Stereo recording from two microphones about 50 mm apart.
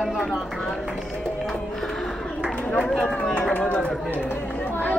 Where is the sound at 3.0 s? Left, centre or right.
Left.